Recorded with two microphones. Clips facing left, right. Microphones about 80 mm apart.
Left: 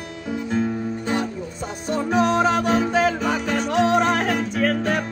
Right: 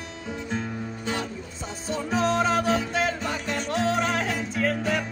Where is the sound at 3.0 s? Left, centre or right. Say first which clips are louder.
Left 6 dB; left.